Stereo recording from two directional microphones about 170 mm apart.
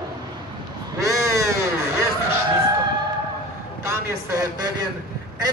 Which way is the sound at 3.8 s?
15° right (ahead or behind).